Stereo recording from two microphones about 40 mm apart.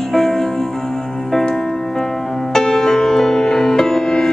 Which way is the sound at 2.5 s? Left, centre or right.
Centre.